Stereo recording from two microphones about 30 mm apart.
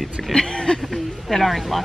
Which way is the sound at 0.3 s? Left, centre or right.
Left.